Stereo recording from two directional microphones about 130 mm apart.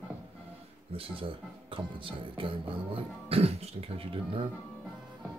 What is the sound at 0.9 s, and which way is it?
Speech, 45° right (ahead or behind).